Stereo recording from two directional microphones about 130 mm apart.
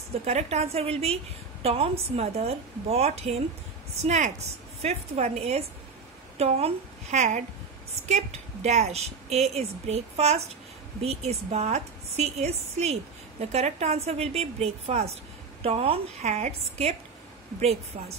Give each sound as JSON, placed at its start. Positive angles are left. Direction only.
{"t": 0.2, "sound": "a woman's voice", "side_deg": -55}